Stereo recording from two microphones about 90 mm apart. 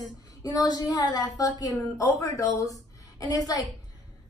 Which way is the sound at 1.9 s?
35° left (ahead or behind).